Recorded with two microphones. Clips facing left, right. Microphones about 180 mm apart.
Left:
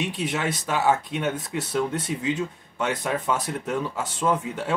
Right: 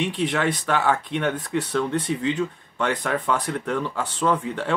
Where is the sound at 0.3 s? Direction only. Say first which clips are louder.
Right 3 dB; 10° left (ahead or behind).